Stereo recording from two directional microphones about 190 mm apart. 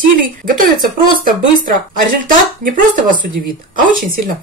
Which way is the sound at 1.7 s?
45° right (ahead or behind).